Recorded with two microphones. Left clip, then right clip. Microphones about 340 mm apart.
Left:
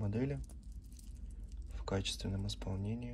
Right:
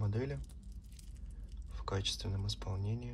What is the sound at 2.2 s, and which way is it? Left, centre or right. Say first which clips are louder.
Speech: left 2 dB; right.